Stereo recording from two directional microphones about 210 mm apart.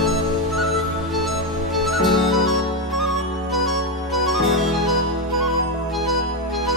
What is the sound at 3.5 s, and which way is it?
Music, centre (ahead or behind).